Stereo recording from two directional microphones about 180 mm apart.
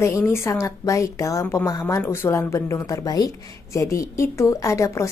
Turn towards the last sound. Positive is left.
turn(degrees=15)  # may be behind; listen again after turning